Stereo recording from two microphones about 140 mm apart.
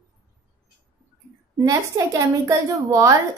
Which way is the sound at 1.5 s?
25° right (ahead or behind).